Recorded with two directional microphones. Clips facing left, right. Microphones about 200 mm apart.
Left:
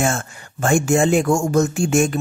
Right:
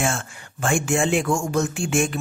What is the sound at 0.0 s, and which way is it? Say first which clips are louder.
Speech: left 4 dB; 40° left (ahead or behind).